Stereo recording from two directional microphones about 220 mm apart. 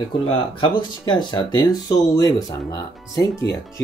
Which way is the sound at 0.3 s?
20° left (ahead or behind).